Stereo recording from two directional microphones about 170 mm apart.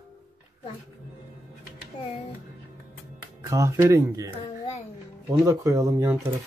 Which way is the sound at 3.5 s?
20° right (ahead or behind).